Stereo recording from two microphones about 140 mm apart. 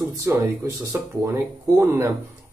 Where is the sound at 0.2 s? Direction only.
20° right (ahead or behind).